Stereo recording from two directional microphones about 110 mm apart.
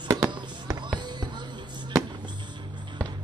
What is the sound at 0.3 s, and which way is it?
Fireworks, 45° right (ahead or behind).